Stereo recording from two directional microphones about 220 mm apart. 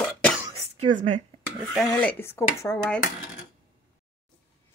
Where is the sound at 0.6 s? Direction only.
30° right (ahead or behind).